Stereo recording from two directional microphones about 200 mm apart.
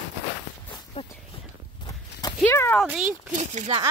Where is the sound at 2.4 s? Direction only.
10° left (ahead or behind).